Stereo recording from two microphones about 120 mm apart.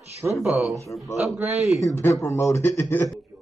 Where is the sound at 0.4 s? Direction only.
5° right (ahead or behind).